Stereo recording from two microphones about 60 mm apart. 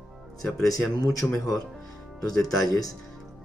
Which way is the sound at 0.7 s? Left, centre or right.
Left.